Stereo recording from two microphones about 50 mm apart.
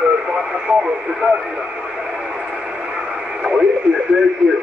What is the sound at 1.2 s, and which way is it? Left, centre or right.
Speech, right.